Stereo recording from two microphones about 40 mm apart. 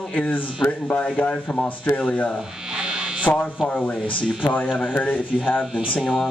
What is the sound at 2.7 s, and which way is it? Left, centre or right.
Hum, centre.